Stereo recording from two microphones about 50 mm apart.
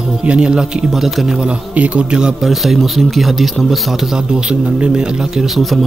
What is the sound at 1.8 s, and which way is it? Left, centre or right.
Speech, right.